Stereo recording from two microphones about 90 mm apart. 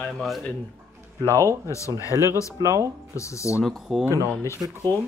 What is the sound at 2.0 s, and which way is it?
Speech, 40° left (ahead or behind).